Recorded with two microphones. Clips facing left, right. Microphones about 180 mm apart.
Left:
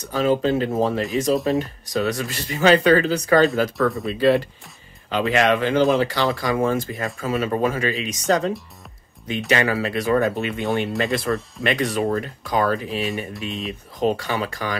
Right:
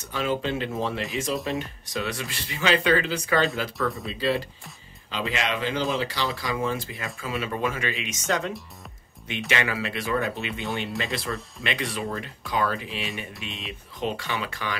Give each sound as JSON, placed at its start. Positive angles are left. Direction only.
{"t": 0.0, "sound": "speech", "side_deg": 40}
{"t": 4.0, "sound": "speech", "side_deg": 55}